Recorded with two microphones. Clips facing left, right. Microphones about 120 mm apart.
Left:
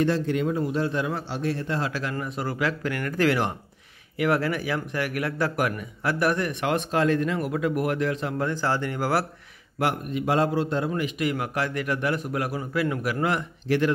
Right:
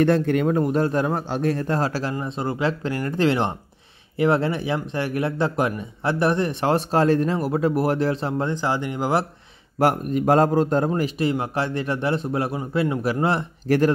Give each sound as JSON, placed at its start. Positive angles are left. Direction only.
{"t": 0.0, "sound": "a man's voice", "side_deg": -55}
{"t": 2.1, "sound": "speech", "side_deg": -25}
{"t": 9.8, "sound": "speech", "side_deg": -40}
{"t": 13.7, "sound": "speech", "side_deg": -40}